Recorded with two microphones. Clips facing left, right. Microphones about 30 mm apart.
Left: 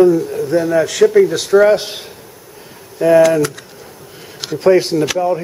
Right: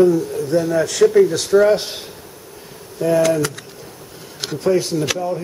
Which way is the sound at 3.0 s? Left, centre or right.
Left.